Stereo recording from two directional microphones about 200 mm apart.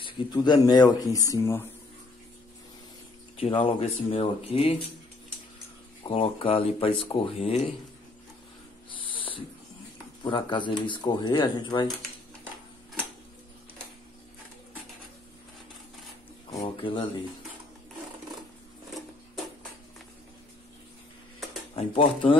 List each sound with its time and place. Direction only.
0.0 s speech: 20° left (ahead or behind)
3.3 s speech: 25° left (ahead or behind)
6.0 s speech: 25° left (ahead or behind)
10.2 s speech: 25° left (ahead or behind)
16.6 s speech: 25° left (ahead or behind)
21.7 s speech: 25° left (ahead or behind)